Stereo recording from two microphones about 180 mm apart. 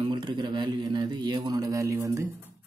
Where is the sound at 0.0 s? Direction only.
25° right (ahead or behind).